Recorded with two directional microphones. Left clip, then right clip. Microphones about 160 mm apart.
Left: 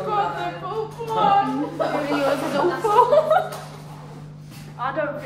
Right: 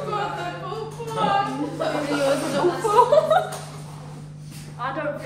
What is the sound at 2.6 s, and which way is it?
Speech, 10° left (ahead or behind).